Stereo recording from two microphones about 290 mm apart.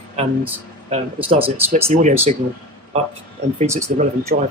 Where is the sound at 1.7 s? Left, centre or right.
Right.